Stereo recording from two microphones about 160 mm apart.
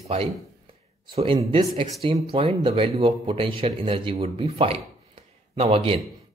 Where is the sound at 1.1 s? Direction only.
35° right (ahead or behind).